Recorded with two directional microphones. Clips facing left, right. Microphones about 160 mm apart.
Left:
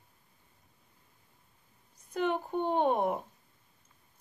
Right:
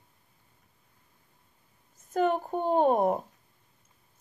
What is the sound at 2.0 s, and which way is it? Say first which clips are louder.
A child's voice: right 5 dB; 45° right (ahead or behind).